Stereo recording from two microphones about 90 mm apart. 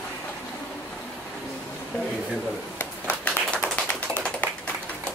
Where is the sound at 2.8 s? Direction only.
15° left (ahead or behind).